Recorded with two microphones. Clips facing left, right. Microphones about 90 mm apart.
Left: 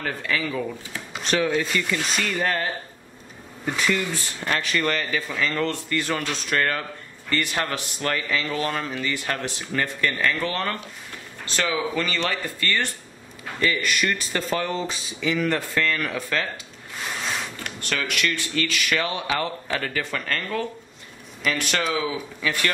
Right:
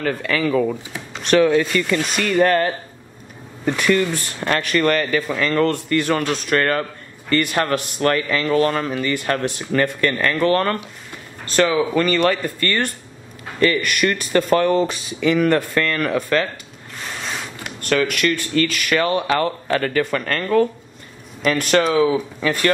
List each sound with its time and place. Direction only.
0.0 s speech: 65° right (ahead or behind)
3.7 s a man's voice: 60° right (ahead or behind)
17.0 s a sound: centre (ahead or behind)
17.7 s a man's voice: 45° right (ahead or behind)